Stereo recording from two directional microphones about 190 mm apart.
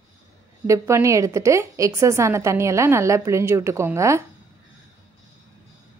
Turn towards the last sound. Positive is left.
turn(degrees=-15)  # may be behind; listen again after turning